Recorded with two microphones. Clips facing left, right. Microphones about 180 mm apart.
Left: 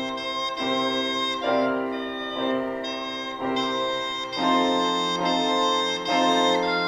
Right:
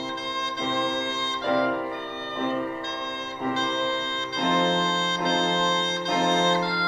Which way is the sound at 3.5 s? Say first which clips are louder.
Left 1 dB; 15° left (ahead or behind).